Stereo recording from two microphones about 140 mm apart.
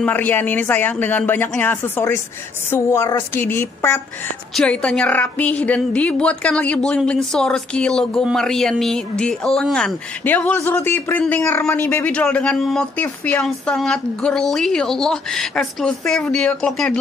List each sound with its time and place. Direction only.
0.0 s a woman's voice: 10° left (ahead or behind)